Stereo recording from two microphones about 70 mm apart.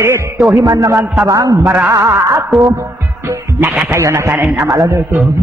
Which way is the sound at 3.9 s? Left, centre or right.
Right.